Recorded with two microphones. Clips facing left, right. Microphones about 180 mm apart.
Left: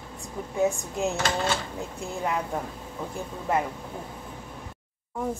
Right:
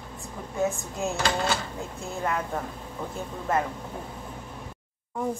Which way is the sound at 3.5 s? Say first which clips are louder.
Even; 15° left (ahead or behind).